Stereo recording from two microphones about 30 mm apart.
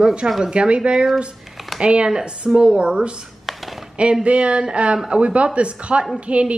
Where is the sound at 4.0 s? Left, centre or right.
Right.